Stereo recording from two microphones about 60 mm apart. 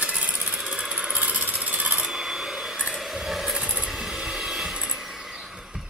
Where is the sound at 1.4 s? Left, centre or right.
Right.